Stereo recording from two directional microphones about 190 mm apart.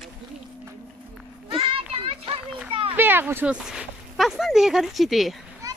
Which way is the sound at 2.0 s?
30° right (ahead or behind).